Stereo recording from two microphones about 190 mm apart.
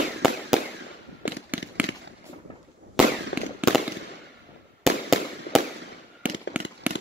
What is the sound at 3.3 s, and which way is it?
Fireworks, 70° left (ahead or behind).